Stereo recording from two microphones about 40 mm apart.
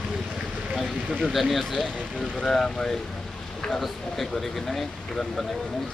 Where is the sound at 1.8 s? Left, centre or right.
Centre.